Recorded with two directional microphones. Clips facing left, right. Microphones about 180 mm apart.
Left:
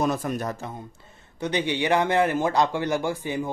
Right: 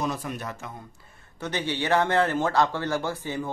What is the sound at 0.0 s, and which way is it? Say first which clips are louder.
Speech: left 5 dB; 50° left (ahead or behind).